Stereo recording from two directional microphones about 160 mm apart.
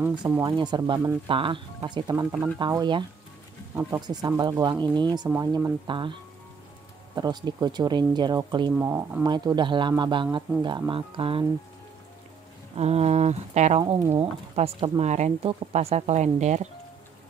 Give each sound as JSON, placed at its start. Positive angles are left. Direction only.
{"t": 0.1, "sound": "speech", "side_deg": -25}
{"t": 7.2, "sound": "speech", "side_deg": -25}
{"t": 8.7, "sound": "speech", "side_deg": -15}
{"t": 9.3, "sound": "speech", "side_deg": -25}
{"t": 12.7, "sound": "speech", "side_deg": -40}